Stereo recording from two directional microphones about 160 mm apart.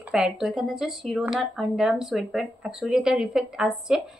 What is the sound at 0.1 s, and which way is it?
A woman's voice, 5° right (ahead or behind).